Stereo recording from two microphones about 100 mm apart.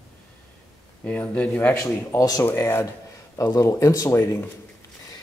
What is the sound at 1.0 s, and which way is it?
Speech, 15° left (ahead or behind).